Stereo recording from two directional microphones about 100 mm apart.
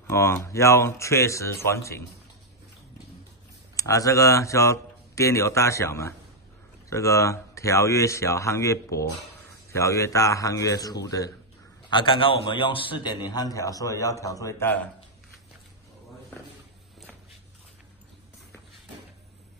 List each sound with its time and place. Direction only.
0.1 s speech: 30° left (ahead or behind)
3.7 s speech: 35° left (ahead or behind)
11.9 s a man's voice: 55° left (ahead or behind); by 14.6 s 35° left (ahead or behind)
14.6 s speech: 20° left (ahead or behind)